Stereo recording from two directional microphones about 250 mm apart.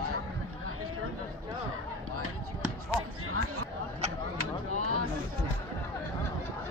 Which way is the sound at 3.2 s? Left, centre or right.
Right.